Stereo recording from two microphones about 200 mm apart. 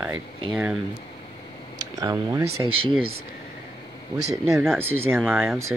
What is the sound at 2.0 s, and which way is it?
Speech, 20° right (ahead or behind).